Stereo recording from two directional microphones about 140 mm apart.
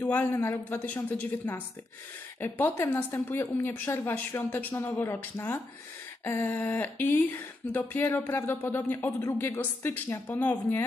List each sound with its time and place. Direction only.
0.1 s speech: 15° left (ahead or behind)